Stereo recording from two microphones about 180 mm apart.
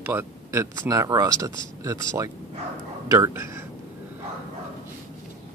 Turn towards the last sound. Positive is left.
turn(degrees=-15)  # may be behind; listen again after turning